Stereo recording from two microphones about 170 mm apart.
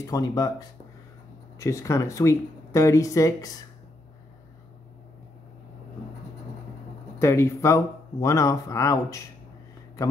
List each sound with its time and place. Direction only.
0.0 s speech: 20° left (ahead or behind)
7.2 s speech: 15° left (ahead or behind)